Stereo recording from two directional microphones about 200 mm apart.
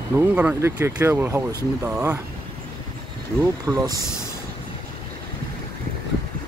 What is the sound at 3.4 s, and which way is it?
Speech, 15° right (ahead or behind).